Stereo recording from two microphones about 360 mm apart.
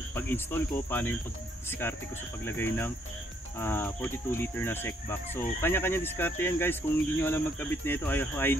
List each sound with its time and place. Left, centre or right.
0.1 s cricket: centre